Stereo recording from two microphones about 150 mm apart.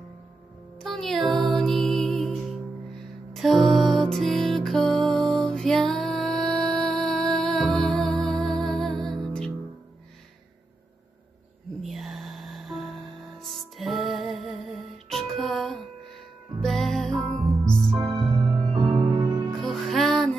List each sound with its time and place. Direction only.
0.8 s music: centre (ahead or behind)
11.8 s music: centre (ahead or behind)
18.3 s music: 25° right (ahead or behind)
19.5 s music: centre (ahead or behind)